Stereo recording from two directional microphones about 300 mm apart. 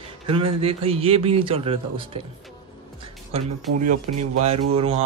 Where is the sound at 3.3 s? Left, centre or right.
Right.